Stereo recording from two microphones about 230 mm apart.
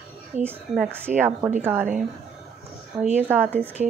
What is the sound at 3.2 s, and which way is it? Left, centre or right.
Speech, centre.